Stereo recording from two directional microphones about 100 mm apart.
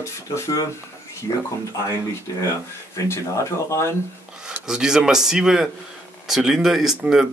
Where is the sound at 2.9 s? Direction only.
30° left (ahead or behind).